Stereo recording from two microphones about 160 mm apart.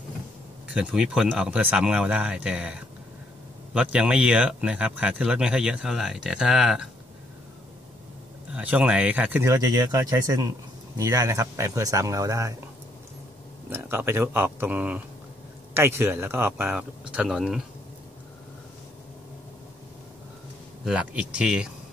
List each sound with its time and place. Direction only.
0.7 s speech: 5° right (ahead or behind)
8.5 s speech: 10° right (ahead or behind)
13.7 s speech: 15° right (ahead or behind)
20.8 s speech: 5° right (ahead or behind)